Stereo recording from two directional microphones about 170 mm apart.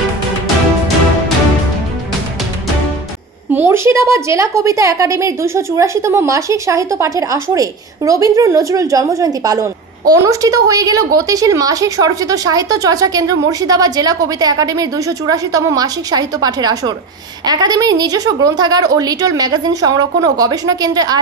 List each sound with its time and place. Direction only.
3.5 s a woman's voice: 15° right (ahead or behind)